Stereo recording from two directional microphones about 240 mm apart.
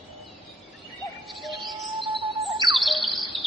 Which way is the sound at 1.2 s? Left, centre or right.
Centre.